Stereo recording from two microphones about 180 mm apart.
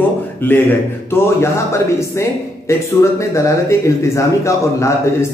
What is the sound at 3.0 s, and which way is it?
A man's voice, 15° left (ahead or behind).